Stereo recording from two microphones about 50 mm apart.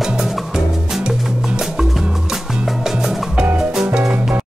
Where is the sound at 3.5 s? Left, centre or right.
Centre.